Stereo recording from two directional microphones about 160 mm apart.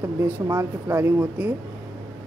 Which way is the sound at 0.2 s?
20° right (ahead or behind).